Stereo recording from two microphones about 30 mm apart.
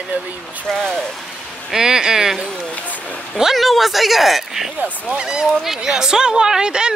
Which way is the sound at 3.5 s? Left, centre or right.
Centre.